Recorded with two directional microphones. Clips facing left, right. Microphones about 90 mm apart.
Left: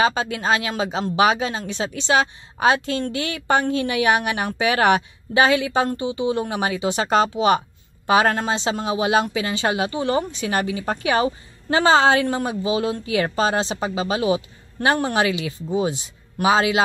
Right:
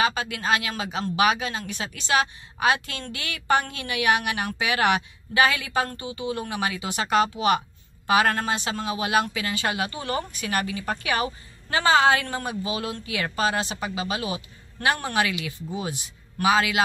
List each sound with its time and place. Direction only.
0.0 s speech: 30° left (ahead or behind)